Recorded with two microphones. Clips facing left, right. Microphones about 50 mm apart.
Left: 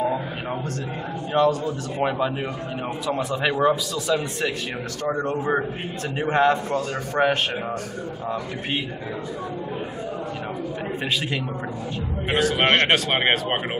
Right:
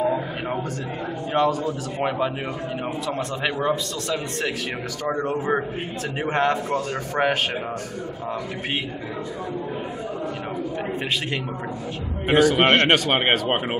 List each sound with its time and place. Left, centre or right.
1.3 s a man's voice: centre
12.3 s a man's voice: centre